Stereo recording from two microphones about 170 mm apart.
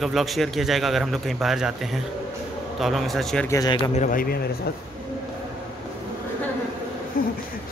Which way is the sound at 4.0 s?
55° left (ahead or behind).